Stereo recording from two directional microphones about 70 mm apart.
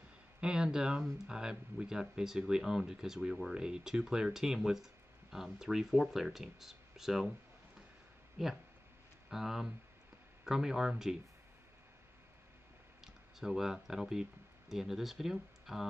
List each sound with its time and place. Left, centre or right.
0.4 s speech: centre
8.4 s speech: centre
13.0 s speech: centre